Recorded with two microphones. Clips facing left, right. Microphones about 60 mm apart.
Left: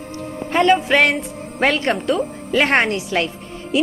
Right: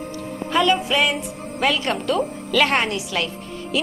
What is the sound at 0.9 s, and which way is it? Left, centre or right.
Music, left.